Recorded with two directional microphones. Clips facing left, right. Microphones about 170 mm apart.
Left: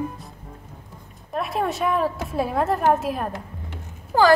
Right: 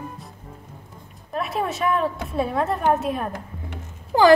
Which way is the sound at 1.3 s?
Centre (ahead or behind).